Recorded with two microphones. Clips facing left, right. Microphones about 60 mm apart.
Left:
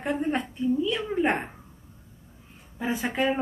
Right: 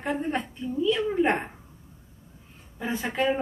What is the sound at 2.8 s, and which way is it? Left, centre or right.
Speech, centre.